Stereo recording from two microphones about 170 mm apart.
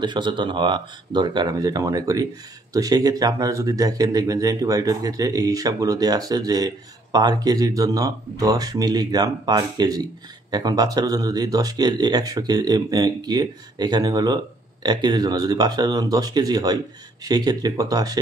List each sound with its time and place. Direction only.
0.0 s speech: 25° right (ahead or behind)